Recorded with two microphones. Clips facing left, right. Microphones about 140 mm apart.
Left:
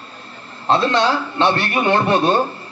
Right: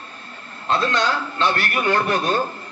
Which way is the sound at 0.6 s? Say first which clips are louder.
Left 5 dB; 30° left (ahead or behind).